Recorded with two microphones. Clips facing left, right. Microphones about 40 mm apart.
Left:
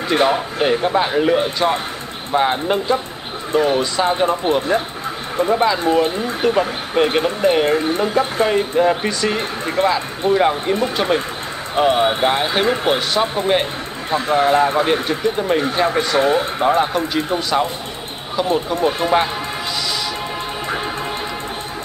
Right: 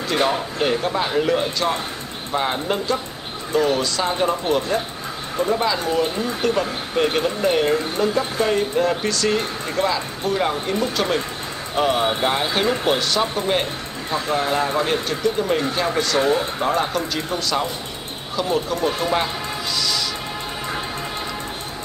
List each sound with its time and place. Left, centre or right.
0.1 s speech: left
7.7 s speech: left
8.5 s speech: centre